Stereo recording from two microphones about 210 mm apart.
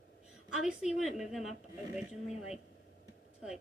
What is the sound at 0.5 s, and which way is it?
A woman's voice, centre (ahead or behind).